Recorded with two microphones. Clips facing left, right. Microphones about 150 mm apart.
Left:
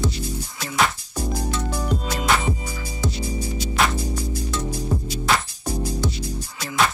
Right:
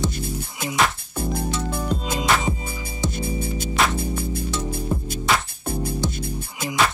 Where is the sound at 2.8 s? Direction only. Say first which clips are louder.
Right 2 dB; 55° right (ahead or behind).